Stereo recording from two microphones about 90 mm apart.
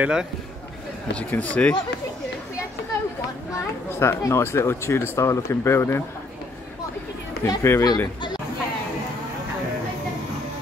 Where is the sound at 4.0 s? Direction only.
30° left (ahead or behind).